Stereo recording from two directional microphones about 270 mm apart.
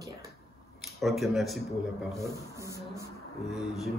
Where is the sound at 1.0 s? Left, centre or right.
Centre.